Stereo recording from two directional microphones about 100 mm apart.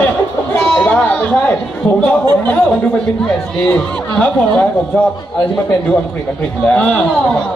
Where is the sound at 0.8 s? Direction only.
10° left (ahead or behind).